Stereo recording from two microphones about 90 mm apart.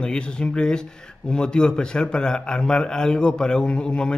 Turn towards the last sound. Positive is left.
turn(degrees=10)  # may be behind; listen again after turning